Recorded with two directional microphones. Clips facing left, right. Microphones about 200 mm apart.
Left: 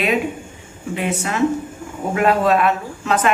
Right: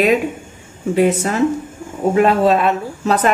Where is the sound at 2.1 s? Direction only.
25° right (ahead or behind).